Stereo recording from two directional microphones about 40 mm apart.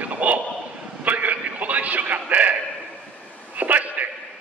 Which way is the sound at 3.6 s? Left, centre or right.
Right.